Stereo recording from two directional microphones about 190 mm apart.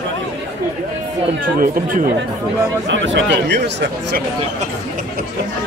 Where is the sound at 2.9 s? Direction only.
75° right (ahead or behind).